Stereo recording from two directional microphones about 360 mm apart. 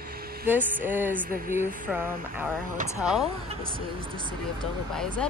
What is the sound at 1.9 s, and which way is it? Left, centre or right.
Speech, centre.